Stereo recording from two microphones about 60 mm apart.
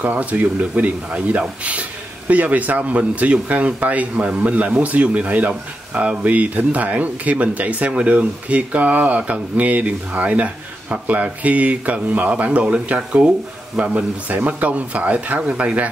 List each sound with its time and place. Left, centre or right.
0.0 s a man's voice: right